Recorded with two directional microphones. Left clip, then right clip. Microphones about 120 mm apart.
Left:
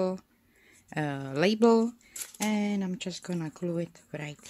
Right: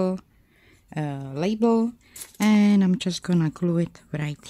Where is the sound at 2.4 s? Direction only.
45° right (ahead or behind).